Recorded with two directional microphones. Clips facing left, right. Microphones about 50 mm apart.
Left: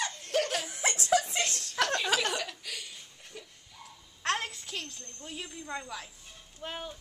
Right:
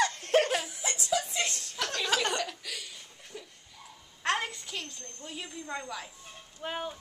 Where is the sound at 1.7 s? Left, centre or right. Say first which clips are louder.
Left 6 dB; left.